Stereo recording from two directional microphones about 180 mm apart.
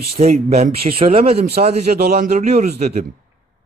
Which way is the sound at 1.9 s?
55° right (ahead or behind).